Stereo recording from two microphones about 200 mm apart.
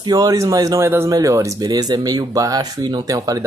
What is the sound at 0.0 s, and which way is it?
Speech, 20° right (ahead or behind).